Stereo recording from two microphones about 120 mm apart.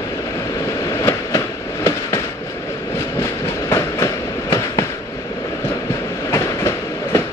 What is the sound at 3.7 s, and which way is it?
Train, 25° left (ahead or behind).